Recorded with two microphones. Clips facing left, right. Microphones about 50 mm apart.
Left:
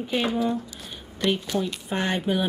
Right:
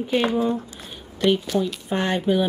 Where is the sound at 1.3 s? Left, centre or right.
Centre.